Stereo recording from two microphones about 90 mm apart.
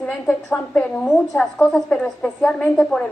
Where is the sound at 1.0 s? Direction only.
5° left (ahead or behind).